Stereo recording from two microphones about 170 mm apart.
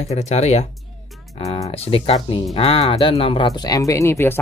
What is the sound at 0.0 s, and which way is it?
Speech, 40° left (ahead or behind).